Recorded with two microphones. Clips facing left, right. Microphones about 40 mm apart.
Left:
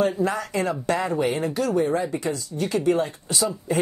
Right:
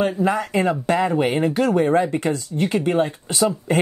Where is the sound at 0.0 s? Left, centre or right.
Right.